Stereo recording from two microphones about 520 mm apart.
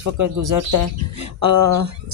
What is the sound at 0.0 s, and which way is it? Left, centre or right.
Speech, right.